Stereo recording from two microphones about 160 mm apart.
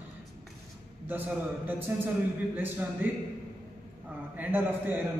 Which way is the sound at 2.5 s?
10° right (ahead or behind).